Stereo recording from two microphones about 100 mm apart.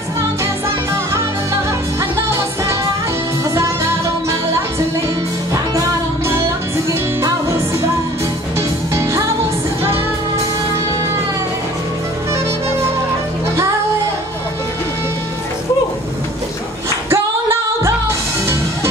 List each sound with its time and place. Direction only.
6.9 s music: 30° right (ahead or behind)
17.1 s music: 25° right (ahead or behind)